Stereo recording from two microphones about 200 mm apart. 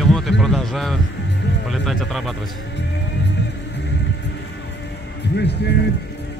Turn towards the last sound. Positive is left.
turn(degrees=55)  # may be behind; listen again after turning